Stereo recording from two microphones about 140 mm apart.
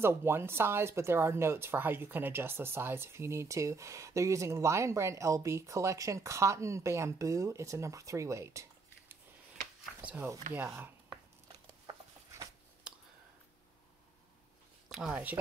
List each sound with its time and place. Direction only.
0.0 s speech: 15° right (ahead or behind)
10.0 s speech: 15° right (ahead or behind)
11.4 s a sound: 25° right (ahead or behind)
14.9 s speech: 5° right (ahead or behind)